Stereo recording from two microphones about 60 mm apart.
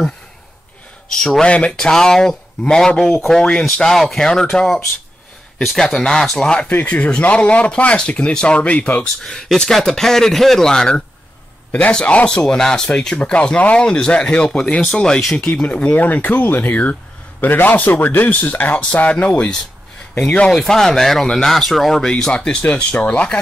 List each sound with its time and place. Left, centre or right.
1.1 s speech: centre
6.7 s speech: left
9.0 s speech: centre
20.5 s speech: centre
22.0 s speech: centre